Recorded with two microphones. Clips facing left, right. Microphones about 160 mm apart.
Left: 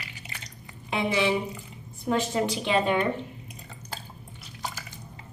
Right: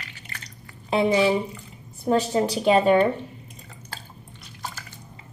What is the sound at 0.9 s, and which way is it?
Speech, 35° right (ahead or behind).